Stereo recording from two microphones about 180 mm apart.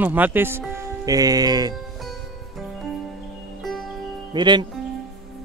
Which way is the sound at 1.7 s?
Centre (ahead or behind).